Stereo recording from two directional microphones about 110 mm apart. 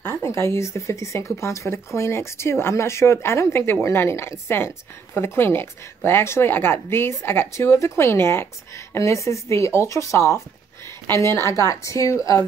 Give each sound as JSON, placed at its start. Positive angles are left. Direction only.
{"t": 0.0, "sound": "speech", "side_deg": 20}